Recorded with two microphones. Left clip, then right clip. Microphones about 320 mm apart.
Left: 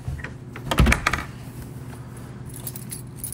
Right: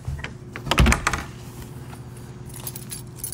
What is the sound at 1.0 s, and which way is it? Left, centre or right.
Computer keyboard, right.